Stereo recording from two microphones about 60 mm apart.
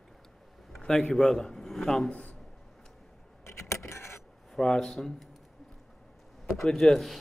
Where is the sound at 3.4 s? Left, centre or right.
Left.